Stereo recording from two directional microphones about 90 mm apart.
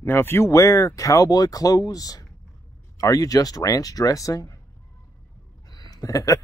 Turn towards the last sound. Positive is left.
turn(degrees=40)  # may be behind; listen again after turning